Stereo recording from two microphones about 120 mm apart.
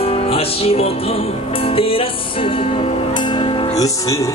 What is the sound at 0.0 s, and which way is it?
Music, 55° left (ahead or behind).